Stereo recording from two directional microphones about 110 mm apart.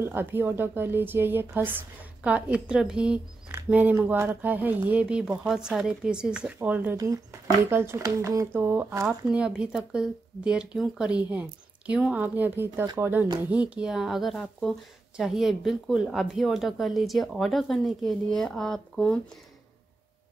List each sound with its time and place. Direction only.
0.0 s a woman's voice: 20° right (ahead or behind)
9.3 s a woman's voice: 10° right (ahead or behind)